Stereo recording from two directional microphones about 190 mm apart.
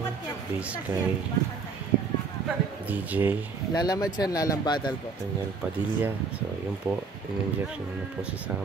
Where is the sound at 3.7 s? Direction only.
20° left (ahead or behind).